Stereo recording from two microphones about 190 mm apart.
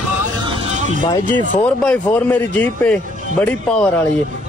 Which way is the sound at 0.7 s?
40° right (ahead or behind).